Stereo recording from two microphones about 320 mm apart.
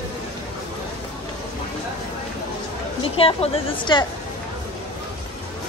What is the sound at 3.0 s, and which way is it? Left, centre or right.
A woman's voice, centre.